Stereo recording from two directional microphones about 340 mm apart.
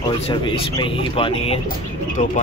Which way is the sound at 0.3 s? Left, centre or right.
Centre.